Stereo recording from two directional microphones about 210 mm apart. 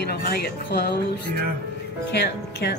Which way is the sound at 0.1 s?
50° left (ahead or behind).